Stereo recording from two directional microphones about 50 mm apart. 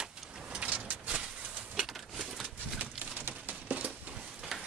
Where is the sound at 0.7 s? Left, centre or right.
Right.